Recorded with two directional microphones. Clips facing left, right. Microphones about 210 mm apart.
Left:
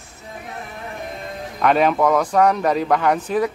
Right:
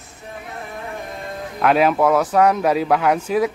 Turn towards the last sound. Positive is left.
turn(degrees=-10)  # may be behind; listen again after turning